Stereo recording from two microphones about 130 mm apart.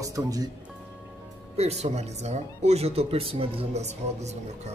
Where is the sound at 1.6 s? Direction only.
55° right (ahead or behind).